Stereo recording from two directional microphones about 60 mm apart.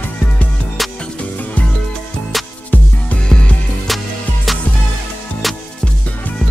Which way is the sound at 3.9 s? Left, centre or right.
Centre.